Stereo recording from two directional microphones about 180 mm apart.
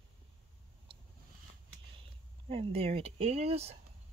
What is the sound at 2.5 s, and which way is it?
Speech, 30° right (ahead or behind).